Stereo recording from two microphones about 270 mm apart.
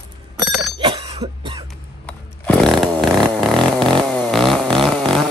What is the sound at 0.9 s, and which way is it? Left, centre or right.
Cough, right.